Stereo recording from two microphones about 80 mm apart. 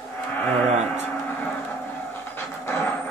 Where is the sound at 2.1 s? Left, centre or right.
Left.